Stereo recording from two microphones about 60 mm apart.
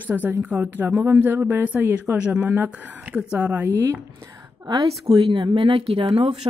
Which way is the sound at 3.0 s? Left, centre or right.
Centre.